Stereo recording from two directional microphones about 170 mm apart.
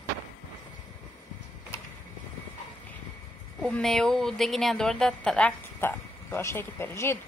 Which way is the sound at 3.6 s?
Centre (ahead or behind).